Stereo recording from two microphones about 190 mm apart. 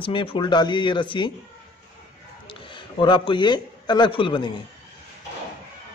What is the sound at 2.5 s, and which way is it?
A man's voice, 25° left (ahead or behind).